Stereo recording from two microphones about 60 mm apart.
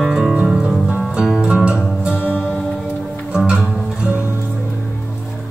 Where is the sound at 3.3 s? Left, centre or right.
Centre.